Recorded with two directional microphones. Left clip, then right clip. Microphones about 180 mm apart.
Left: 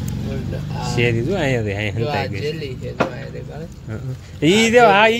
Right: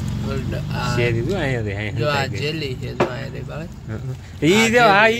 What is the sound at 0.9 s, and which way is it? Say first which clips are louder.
A man's voice: left 3 dB; 15° left (ahead or behind).